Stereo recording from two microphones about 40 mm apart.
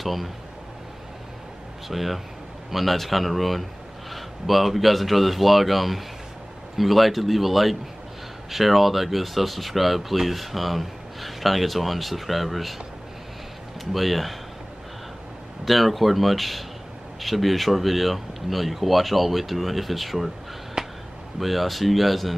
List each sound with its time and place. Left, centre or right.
0.0 s speech: centre
1.9 s speech: centre
13.9 s speech: centre
15.6 s speech: centre
20.8 s a sound: centre
21.4 s speech: centre